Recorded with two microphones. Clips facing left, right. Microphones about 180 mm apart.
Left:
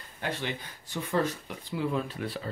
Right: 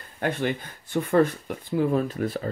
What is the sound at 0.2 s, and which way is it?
Speech, 50° right (ahead or behind).